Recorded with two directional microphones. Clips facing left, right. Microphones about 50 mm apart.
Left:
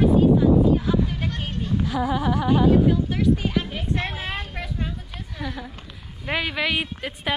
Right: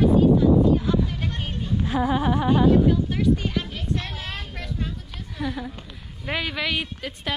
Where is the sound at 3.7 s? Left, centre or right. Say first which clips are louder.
Left 2 dB; left.